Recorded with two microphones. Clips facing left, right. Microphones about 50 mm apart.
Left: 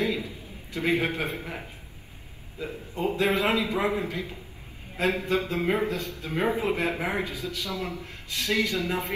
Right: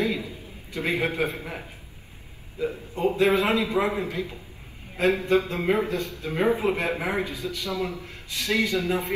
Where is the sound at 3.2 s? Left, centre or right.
Right.